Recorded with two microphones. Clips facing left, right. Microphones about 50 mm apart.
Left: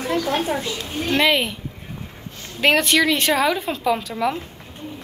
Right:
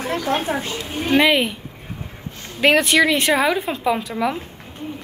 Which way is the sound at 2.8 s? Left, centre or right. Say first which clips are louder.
Right 2 dB; centre.